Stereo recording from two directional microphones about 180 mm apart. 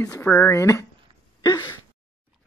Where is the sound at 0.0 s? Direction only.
15° left (ahead or behind).